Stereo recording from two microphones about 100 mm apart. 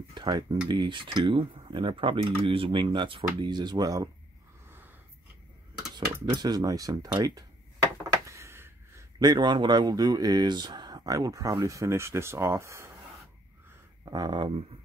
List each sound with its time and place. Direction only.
0.1 s speech: 45° right (ahead or behind)
5.9 s speech: 45° right (ahead or behind)
8.3 s a sound: 30° right (ahead or behind)
9.2 s speech: 45° right (ahead or behind); by 12.9 s 30° right (ahead or behind)
14.0 s speech: 45° right (ahead or behind)